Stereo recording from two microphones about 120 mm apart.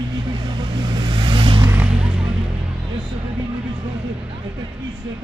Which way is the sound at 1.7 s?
10° right (ahead or behind).